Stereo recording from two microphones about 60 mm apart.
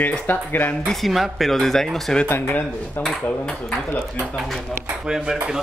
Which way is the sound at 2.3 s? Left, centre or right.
Left.